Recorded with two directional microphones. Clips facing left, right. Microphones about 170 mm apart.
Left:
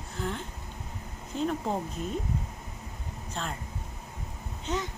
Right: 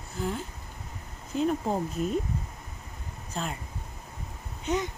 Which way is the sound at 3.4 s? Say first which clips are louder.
Right 2 dB; 5° right (ahead or behind).